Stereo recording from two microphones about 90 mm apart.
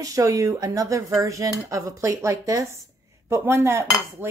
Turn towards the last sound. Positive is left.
turn(degrees=-25)  # may be behind; listen again after turning